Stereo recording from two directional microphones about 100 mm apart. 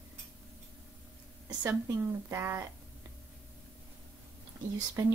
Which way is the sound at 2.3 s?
25° right (ahead or behind).